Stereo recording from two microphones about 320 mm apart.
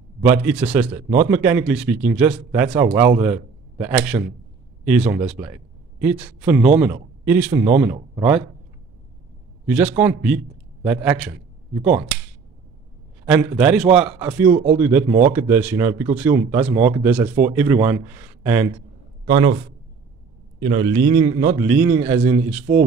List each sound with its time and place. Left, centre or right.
0.2 s a man's voice: centre
9.7 s a man's voice: centre
13.2 s a man's voice: centre
20.5 s speech: centre